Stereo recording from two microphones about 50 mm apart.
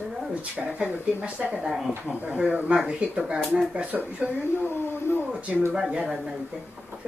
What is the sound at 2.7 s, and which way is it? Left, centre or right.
Speech, right.